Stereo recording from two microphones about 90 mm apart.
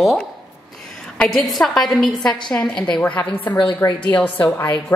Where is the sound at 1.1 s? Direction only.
5° left (ahead or behind).